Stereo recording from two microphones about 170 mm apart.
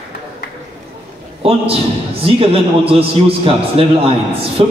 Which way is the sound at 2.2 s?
35° right (ahead or behind).